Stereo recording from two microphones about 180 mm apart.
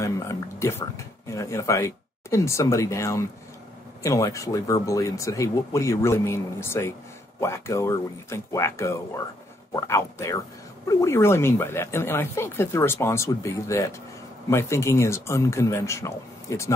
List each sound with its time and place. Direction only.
0.0 s speech: 15° left (ahead or behind)